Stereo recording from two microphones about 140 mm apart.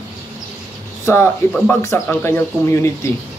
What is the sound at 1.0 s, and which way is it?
A man's voice, 20° left (ahead or behind).